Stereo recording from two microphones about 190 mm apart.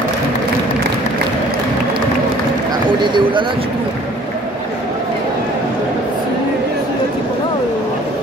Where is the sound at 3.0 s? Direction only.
25° right (ahead or behind).